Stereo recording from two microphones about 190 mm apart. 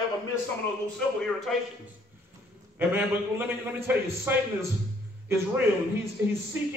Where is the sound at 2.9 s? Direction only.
10° right (ahead or behind).